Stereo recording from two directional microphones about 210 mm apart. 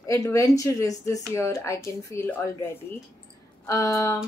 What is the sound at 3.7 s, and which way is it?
Speech, 15° left (ahead or behind).